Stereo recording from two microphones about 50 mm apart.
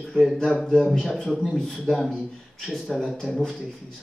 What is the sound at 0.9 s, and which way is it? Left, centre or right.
Speech, centre.